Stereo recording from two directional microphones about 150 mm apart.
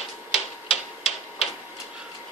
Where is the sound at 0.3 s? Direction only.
40° left (ahead or behind).